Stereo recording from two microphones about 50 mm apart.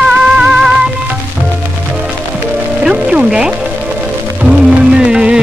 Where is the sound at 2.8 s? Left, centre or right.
Centre.